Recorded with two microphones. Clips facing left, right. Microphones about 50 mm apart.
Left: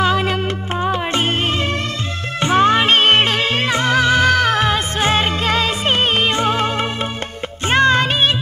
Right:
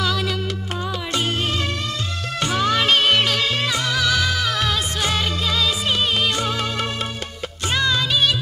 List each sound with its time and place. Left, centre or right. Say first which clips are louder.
0.0 s music: left 6 dB; left
2.4 s music: left 6 dB; left
4.6 s music: left 5 dB; left